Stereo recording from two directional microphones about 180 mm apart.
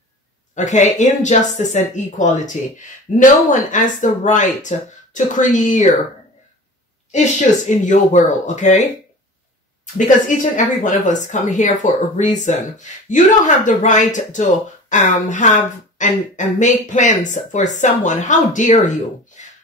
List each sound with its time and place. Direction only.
0.6 s speech: 40° left (ahead or behind)
7.1 s speech: 40° left (ahead or behind)
9.9 s speech: 45° left (ahead or behind)